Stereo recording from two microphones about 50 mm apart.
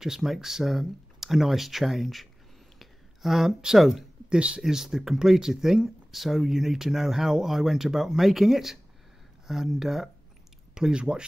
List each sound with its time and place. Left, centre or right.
0.0 s speech: centre
4.3 s speech: right
4.6 s speech: centre
9.8 s speech: centre
10.7 s speech: centre